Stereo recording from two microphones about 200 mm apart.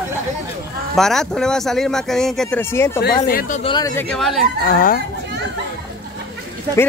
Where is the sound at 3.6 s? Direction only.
20° left (ahead or behind).